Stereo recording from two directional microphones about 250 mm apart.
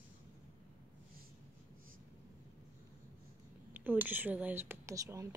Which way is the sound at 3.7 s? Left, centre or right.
Centre.